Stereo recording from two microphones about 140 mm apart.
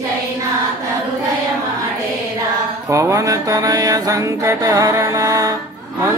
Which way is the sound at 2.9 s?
20° right (ahead or behind).